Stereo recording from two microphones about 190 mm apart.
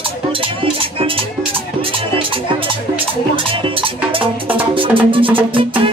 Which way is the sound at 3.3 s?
25° right (ahead or behind).